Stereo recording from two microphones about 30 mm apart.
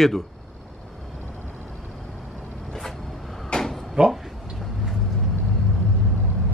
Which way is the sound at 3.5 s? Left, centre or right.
Left.